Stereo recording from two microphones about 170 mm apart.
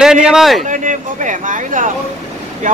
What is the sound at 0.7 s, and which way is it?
Speech, 50° right (ahead or behind).